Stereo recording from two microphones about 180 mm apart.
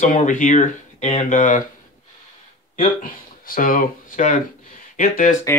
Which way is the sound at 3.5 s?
50° left (ahead or behind).